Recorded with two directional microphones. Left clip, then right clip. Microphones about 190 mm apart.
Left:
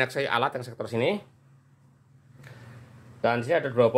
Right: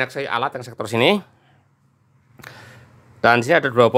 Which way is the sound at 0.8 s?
40° right (ahead or behind).